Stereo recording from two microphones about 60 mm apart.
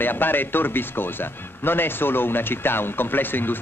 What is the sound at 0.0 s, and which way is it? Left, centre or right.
Speech, left.